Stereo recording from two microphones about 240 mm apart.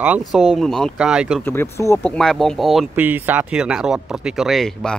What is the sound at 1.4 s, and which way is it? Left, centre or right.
Speech, centre.